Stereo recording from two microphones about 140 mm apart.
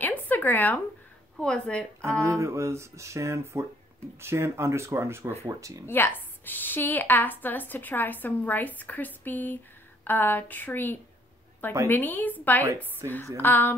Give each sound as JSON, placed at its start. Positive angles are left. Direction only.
{"t": 0.0, "sound": "a sound", "side_deg": 10}
{"t": 1.3, "sound": "a woman's voice", "side_deg": 5}
{"t": 2.2, "sound": "speech", "side_deg": -20}
{"t": 5.9, "sound": "a woman's voice", "side_deg": 15}
{"t": 13.0, "sound": "speech", "side_deg": -25}
{"t": 13.4, "sound": "a woman's voice", "side_deg": 15}